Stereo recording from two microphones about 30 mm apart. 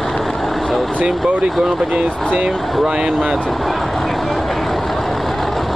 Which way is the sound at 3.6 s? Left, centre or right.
Centre.